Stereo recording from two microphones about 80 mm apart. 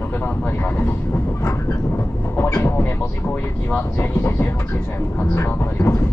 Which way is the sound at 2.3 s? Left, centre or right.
Left.